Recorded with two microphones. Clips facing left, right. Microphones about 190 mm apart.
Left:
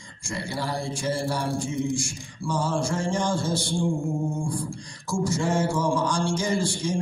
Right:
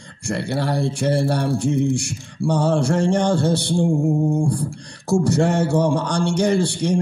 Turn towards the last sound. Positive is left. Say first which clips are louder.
# right 7 dB
turn(degrees=-65)  # may be behind; listen again after turning